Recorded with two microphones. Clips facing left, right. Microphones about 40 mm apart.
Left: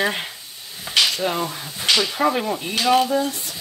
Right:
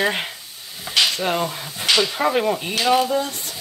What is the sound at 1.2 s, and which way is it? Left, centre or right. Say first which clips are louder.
Speech: right 1 dB; centre.